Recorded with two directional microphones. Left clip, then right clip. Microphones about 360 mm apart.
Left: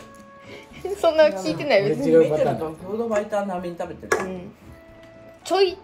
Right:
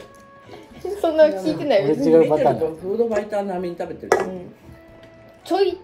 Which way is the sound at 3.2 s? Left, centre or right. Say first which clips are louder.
Right 1 dB; left.